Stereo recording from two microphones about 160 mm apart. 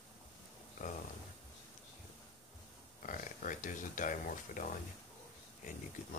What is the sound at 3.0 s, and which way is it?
Speech, 55° left (ahead or behind).